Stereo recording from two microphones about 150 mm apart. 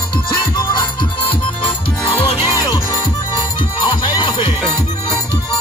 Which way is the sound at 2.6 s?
25° left (ahead or behind).